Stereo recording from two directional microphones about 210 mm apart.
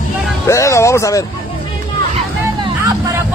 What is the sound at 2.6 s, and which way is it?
Music, 15° right (ahead or behind).